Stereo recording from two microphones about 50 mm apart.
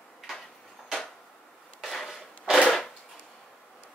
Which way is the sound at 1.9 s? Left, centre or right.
Centre.